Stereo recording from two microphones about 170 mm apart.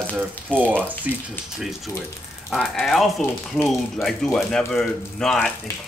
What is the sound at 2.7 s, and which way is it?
Speech, centre (ahead or behind).